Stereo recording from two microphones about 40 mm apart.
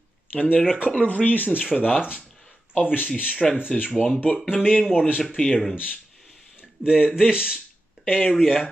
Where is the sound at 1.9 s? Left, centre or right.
Right.